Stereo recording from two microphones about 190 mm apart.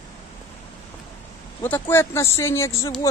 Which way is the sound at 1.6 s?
10° left (ahead or behind).